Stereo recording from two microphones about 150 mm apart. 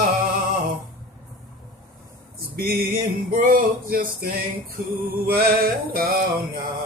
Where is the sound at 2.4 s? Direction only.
80° right.